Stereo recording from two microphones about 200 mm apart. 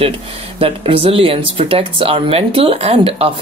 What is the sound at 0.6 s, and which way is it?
Speech, 25° right (ahead or behind).